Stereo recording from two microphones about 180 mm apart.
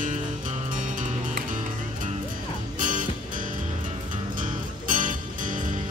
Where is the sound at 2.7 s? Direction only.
45° right (ahead or behind).